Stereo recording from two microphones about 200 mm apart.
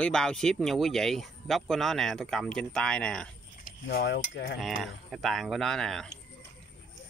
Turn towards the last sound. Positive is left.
turn(degrees=0)  # may be behind; listen again after turning